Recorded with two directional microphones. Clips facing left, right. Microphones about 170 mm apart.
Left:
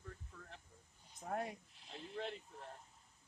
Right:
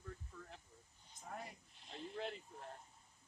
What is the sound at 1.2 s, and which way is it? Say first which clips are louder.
Speech: left 8 dB; 60° left (ahead or behind).